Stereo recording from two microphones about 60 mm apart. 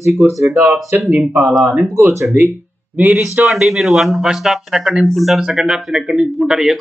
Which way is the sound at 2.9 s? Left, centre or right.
Right.